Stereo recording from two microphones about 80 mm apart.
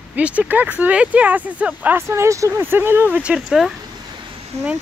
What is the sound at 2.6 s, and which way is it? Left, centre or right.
Speech, right.